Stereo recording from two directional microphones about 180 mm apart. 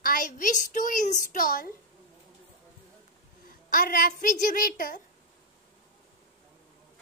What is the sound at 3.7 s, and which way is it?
A woman's voice, 50° left (ahead or behind).